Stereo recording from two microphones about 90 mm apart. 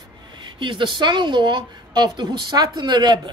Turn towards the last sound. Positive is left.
turn(degrees=-55)  # may be behind; listen again after turning